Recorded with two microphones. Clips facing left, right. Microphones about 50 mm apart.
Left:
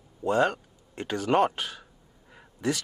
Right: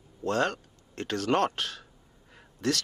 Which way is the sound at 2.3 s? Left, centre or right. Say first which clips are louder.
Left 1 dB; centre.